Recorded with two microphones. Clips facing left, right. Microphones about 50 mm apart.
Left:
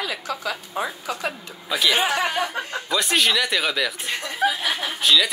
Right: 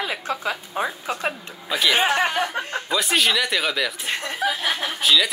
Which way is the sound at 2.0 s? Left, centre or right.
Right.